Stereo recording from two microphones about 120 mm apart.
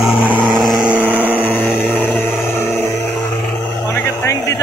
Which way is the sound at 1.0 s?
15° left (ahead or behind).